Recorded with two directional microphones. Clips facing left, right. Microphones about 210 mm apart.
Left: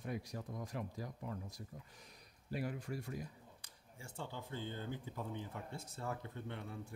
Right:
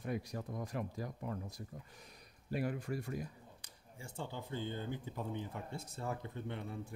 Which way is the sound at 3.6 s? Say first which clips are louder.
Right 4 dB; 15° right (ahead or behind).